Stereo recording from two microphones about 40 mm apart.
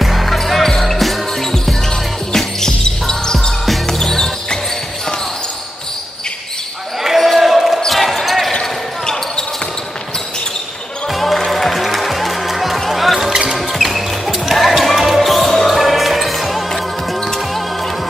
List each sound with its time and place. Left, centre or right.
0.0 s basketball bounce: centre
1.5 s music: centre
7.0 s basketball bounce: centre
11.1 s music: centre
13.3 s basketball bounce: centre
13.6 s music: centre